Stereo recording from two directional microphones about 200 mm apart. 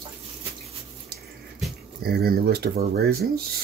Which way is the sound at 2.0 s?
50° right (ahead or behind).